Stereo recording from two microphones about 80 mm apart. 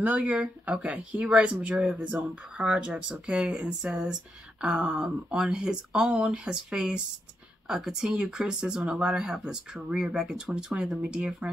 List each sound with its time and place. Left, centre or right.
0.2 s speech: centre